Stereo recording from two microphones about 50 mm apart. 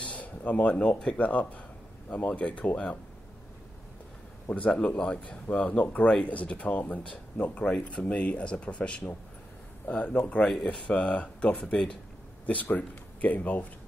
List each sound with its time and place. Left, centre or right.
0.0 s a sound: left
1.1 s speech: left
4.5 s speech: left
7.6 s speech: centre
8.0 s speech: left
10.4 s speech: centre
10.9 s speech: left
12.4 s speech: left